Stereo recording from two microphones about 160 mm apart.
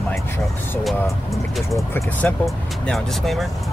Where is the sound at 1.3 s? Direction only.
Centre (ahead or behind).